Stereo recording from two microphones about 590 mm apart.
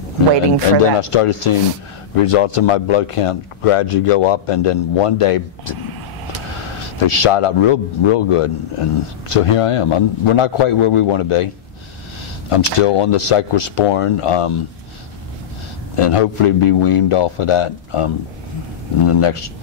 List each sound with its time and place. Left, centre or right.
1.0 s speech: left
7.0 s speech: left
16.0 s speech: left